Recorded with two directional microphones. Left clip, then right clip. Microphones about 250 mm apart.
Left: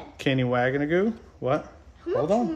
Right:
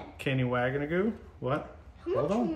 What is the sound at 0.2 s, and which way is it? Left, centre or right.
Speech, left.